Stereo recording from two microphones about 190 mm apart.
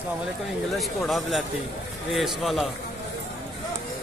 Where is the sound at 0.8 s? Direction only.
Centre (ahead or behind).